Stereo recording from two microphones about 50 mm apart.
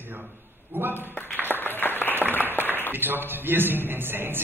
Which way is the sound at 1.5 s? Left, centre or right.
Left.